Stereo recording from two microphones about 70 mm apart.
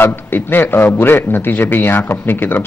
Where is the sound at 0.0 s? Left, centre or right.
Left.